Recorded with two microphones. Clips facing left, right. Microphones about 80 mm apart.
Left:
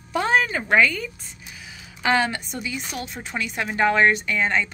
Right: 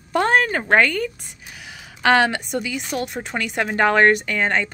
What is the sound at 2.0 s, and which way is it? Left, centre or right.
A woman's voice, right.